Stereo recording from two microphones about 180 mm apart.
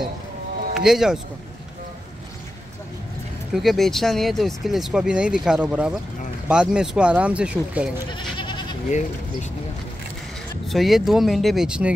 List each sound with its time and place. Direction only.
0.7 s speech: centre (ahead or behind)
3.5 s speech: centre (ahead or behind)
8.1 s goat: 25° left (ahead or behind)
8.8 s speech: 40° left (ahead or behind)
10.7 s speech: centre (ahead or behind)